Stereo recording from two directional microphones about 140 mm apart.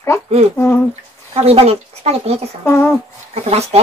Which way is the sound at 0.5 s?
15° left (ahead or behind).